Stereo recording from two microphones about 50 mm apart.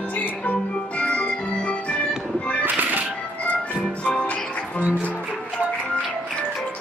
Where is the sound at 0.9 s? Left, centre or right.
Left.